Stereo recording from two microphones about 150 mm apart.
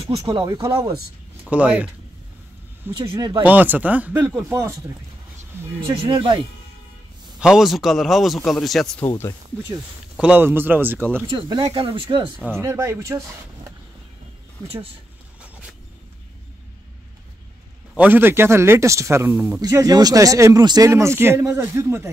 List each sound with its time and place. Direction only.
0.0 s speech: 30° right (ahead or behind)
1.5 s a man's voice: 10° right (ahead or behind)
3.0 s speech: 30° right (ahead or behind)
3.4 s a man's voice: 10° right (ahead or behind)
6.0 s speech: 35° right (ahead or behind)
7.3 s a man's voice: 5° right (ahead or behind)
9.0 s speech: 15° left (ahead or behind)
10.1 s a man's voice: 10° right (ahead or behind)
11.2 s speech: 30° right (ahead or behind)
12.5 s a man's voice: 20° right (ahead or behind)
17.9 s a man's voice: 10° right (ahead or behind)